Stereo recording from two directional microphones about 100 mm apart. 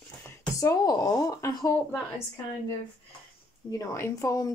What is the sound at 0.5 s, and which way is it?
Speech, 35° left (ahead or behind).